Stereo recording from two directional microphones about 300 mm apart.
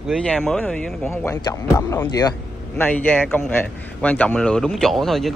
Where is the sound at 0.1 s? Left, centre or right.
Centre.